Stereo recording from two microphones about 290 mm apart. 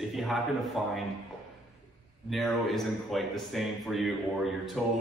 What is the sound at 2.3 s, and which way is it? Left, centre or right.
A man's voice, centre.